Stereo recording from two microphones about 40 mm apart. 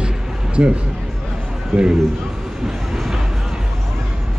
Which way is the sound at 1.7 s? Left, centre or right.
Centre.